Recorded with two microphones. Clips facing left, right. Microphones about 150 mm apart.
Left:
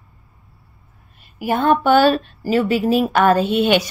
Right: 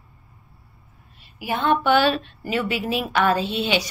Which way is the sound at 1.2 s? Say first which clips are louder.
Left 6 dB; 50° left (ahead or behind).